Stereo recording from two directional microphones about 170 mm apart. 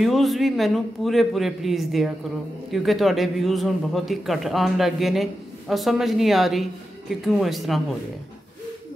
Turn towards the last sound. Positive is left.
turn(degrees=0)  # may be behind; listen again after turning